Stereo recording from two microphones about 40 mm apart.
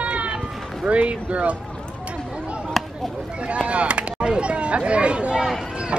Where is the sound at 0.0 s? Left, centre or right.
Right.